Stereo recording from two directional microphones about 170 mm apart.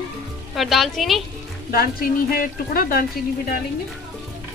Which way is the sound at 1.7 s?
60° left (ahead or behind).